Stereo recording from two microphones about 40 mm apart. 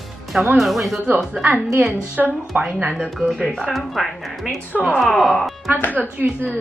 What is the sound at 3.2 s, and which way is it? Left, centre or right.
Speech, centre.